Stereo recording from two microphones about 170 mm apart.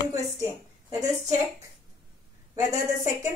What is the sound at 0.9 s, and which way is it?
Speech, 20° right (ahead or behind).